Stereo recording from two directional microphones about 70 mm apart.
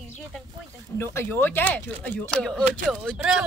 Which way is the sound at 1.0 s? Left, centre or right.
Left.